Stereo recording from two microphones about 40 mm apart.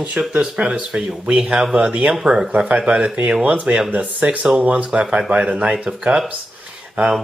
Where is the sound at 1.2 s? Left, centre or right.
Right.